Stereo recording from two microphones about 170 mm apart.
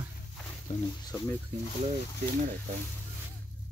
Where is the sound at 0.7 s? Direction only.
45° left (ahead or behind).